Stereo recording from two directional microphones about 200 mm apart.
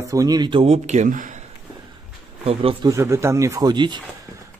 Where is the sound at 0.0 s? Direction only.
15° right (ahead or behind); by 1.5 s 40° right (ahead or behind).